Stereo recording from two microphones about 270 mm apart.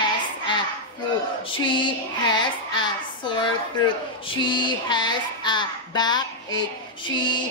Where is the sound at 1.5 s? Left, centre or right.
Centre.